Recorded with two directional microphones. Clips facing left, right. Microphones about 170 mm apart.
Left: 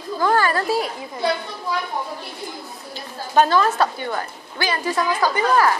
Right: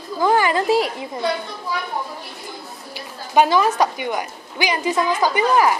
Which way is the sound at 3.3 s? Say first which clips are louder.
Right 1 dB; 15° right (ahead or behind).